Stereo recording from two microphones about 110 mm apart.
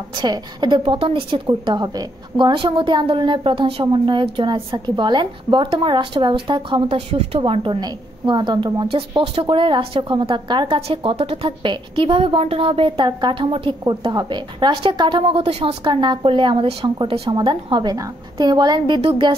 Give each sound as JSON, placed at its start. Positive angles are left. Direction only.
{"t": 0.1, "sound": "a woman's voice", "side_deg": -40}
{"t": 9.2, "sound": "a woman's voice", "side_deg": -55}
{"t": 18.9, "sound": "a woman's voice", "side_deg": -55}